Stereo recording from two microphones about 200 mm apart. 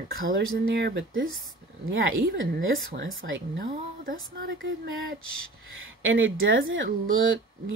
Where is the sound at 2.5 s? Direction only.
50° right (ahead or behind).